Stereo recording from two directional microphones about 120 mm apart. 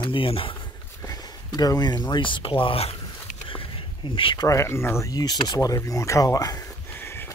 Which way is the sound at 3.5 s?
45° left (ahead or behind).